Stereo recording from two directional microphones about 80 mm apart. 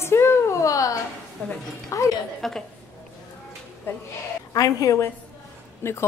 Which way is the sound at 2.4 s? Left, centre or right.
Centre.